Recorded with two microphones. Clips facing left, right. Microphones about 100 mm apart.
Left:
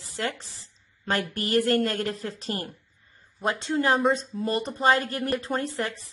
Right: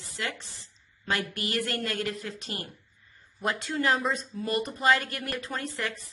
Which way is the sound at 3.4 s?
25° left (ahead or behind).